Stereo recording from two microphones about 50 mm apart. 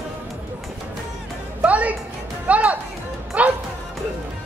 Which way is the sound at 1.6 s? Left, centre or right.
Right.